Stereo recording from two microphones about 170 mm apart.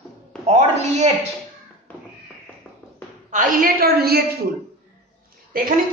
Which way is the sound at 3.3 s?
50° right (ahead or behind).